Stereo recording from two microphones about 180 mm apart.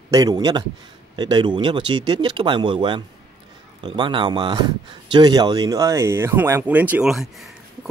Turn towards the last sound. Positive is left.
turn(degrees=0)  # may be behind; listen again after turning